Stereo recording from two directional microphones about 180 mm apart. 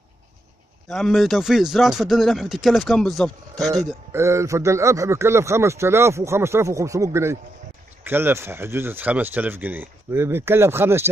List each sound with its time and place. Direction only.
0.8 s speech: centre (ahead or behind)
4.1 s a man's voice: 15° right (ahead or behind)